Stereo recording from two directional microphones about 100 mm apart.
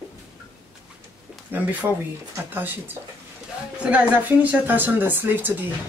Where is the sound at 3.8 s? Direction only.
15° right (ahead or behind).